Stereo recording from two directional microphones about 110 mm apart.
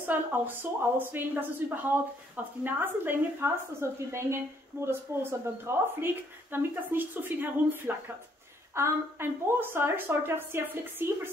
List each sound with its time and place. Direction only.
0.0 s a woman's voice: 20° right (ahead or behind)